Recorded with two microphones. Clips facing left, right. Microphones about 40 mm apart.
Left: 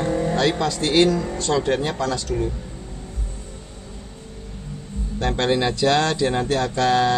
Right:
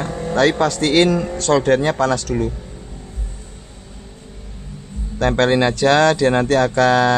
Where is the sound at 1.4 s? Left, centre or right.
Right.